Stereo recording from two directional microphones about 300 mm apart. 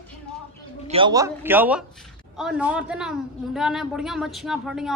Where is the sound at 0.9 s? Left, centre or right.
Centre.